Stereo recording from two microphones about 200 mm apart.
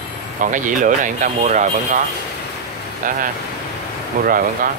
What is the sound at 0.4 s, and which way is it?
Speech, 40° right (ahead or behind).